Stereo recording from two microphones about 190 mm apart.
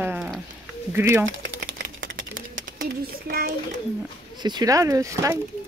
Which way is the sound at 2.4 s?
45° right (ahead or behind).